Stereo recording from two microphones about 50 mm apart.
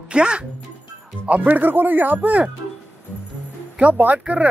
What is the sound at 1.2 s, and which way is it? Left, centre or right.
Speech, right.